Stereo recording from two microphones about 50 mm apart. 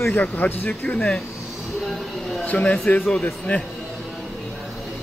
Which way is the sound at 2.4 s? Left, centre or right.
Left.